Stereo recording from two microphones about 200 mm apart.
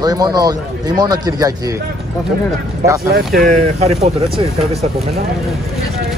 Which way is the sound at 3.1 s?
45° right (ahead or behind).